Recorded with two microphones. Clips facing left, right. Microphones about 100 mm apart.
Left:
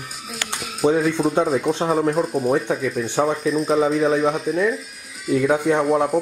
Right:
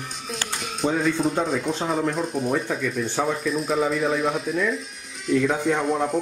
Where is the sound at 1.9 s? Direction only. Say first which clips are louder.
Left 5 dB; 45° left (ahead or behind).